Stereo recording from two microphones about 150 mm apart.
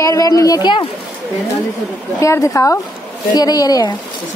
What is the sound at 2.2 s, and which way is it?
A woman's voice, 20° left (ahead or behind).